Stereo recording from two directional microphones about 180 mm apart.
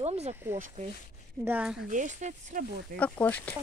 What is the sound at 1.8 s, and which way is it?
Speech, 45° right (ahead or behind).